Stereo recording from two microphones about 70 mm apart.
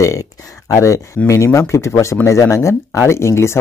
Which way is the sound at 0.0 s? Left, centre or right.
Left.